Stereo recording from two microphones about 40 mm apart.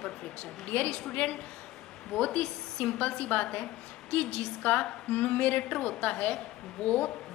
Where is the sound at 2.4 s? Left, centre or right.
Left.